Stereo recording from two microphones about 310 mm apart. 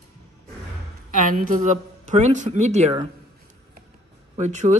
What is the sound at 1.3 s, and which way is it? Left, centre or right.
A man's voice, right.